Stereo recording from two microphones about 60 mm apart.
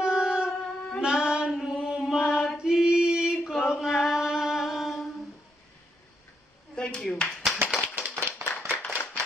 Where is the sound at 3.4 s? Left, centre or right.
Centre.